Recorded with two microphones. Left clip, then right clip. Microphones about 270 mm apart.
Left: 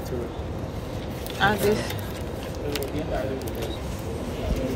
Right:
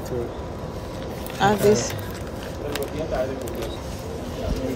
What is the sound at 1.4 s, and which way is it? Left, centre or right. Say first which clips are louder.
Speech: right 4 dB; centre.